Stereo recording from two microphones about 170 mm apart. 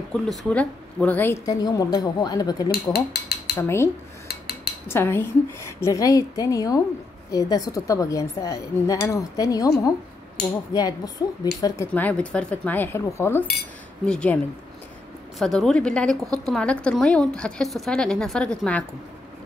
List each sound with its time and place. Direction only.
0.1 s speech: centre (ahead or behind); by 2.7 s 25° left (ahead or behind)
2.9 s mechanisms: 65° left (ahead or behind)
3.5 s speech: 15° left (ahead or behind)
4.3 s cutlery: 65° left (ahead or behind)
4.8 s speech: 15° left (ahead or behind)
10.7 s speech: 20° left (ahead or behind)
11.8 s a woman's voice: 10° left (ahead or behind)